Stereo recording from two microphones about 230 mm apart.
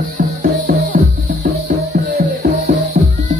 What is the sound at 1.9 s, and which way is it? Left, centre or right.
Music, right.